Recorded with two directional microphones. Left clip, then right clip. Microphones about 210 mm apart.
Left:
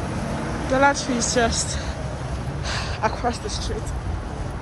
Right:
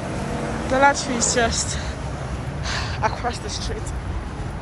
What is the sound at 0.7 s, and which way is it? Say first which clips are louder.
Speech: right 1 dB; 20° left (ahead or behind).